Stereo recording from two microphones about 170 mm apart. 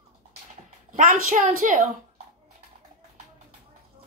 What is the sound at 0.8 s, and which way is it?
A woman's voice, 50° right (ahead or behind).